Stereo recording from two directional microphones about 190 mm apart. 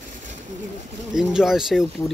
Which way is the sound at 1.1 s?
5° right (ahead or behind).